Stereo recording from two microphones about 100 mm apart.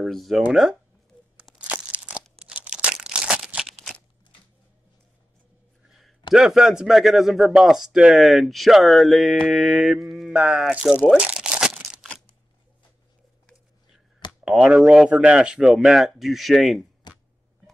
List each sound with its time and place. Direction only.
0.0 s speech: centre (ahead or behind)
1.3 s crunch: 10° right (ahead or behind)
2.3 s crumpling: 10° right (ahead or behind)
5.9 s a sound: centre (ahead or behind)
6.3 s speech: 5° right (ahead or behind)
11.1 s crumpling: 10° right (ahead or behind)
14.4 s speech: 5° right (ahead or behind)
17.1 s a sound: 45° left (ahead or behind)